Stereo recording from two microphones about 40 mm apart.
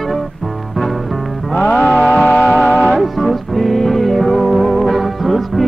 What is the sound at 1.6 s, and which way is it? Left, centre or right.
Music, left.